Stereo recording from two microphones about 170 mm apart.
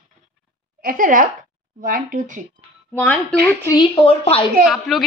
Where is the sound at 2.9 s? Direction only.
10° left (ahead or behind).